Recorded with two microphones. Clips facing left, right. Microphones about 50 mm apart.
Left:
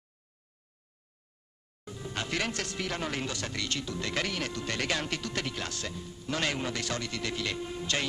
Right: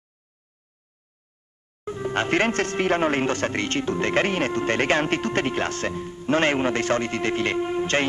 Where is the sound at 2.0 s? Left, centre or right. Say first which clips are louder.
Right 11 dB; right.